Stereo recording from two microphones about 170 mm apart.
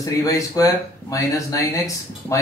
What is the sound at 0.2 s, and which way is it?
Speech, 20° left (ahead or behind).